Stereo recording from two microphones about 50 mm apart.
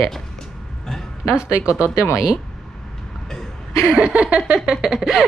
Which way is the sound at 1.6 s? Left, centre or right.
Right.